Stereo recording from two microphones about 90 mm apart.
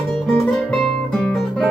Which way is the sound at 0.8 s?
5° left (ahead or behind).